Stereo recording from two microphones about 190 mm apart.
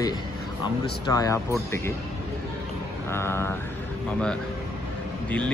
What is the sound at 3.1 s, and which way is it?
Speech, 10° left (ahead or behind).